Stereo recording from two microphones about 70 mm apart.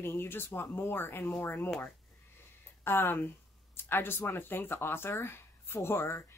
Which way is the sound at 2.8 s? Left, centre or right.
Left.